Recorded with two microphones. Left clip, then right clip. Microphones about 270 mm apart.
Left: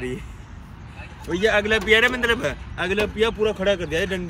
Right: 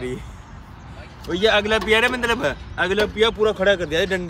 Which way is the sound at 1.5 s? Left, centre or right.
Right.